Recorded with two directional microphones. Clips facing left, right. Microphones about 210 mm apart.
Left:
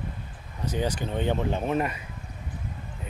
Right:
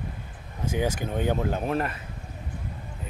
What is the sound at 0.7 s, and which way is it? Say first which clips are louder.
Speech: right 1 dB; 10° right (ahead or behind).